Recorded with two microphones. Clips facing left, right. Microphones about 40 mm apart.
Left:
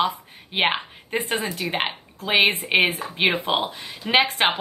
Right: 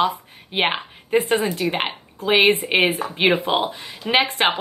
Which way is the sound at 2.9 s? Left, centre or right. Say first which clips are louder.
Right 5 dB; right.